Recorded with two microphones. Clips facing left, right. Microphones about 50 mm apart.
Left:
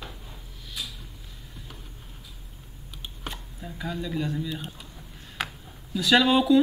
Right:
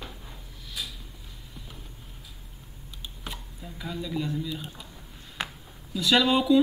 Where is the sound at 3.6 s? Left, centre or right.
Centre.